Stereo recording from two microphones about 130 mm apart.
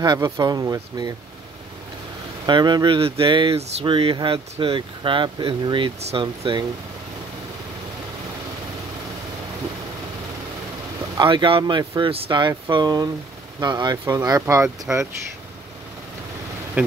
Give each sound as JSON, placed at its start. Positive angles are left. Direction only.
{"t": 0.0, "sound": "speech", "side_deg": -30}
{"t": 2.4, "sound": "speech", "side_deg": -35}
{"t": 5.9, "sound": "speech", "side_deg": -55}
{"t": 6.2, "sound": "speech", "side_deg": -35}
{"t": 11.1, "sound": "speech", "side_deg": -40}